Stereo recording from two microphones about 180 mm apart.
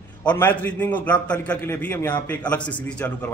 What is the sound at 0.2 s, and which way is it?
A man's voice, 10° left (ahead or behind).